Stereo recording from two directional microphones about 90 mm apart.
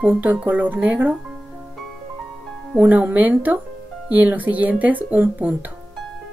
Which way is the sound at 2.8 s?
20° right (ahead or behind).